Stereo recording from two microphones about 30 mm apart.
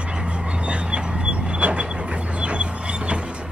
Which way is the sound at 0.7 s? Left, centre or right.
Right.